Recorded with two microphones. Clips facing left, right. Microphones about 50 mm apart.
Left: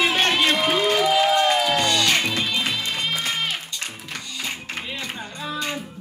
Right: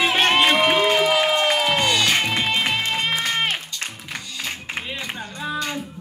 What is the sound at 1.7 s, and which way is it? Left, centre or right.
Music, centre.